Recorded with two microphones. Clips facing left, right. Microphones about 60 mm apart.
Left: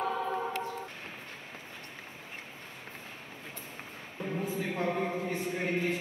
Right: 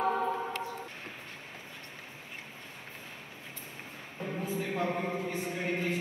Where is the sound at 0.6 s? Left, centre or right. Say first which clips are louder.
Left 2 dB; left.